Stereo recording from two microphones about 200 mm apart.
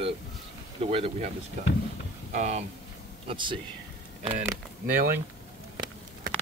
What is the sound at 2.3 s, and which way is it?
Speech, 35° right (ahead or behind).